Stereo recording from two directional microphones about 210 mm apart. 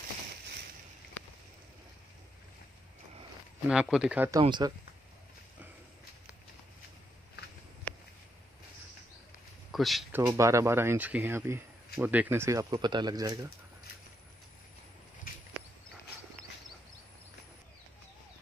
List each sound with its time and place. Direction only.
3.6 s speech: 5° right (ahead or behind)
4.4 s speech: 20° right (ahead or behind)
9.7 s speech: centre (ahead or behind)
10.2 s speech: 15° right (ahead or behind)